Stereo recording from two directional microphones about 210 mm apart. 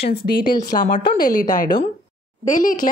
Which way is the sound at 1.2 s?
40° left (ahead or behind).